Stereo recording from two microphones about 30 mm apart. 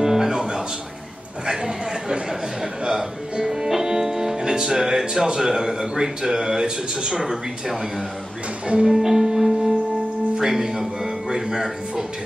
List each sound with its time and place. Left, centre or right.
0.0 s music: centre
1.4 s a sound: right
2.8 s music: right
4.5 s speech: right
6.6 s a man's voice: right
7.2 s speech: centre
8.8 s music: centre
10.4 s speech: centre